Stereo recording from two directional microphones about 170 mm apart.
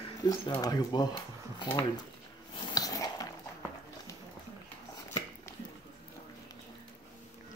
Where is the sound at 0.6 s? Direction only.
20° left (ahead or behind).